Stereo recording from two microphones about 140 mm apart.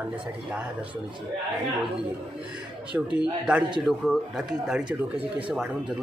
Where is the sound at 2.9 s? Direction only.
5° right (ahead or behind).